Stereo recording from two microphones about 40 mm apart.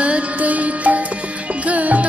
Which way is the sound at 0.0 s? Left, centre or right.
Right.